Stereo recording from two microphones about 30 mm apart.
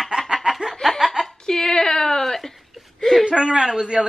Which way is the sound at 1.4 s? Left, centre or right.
Centre.